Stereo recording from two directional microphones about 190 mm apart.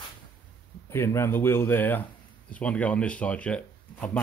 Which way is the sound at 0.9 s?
15° left (ahead or behind).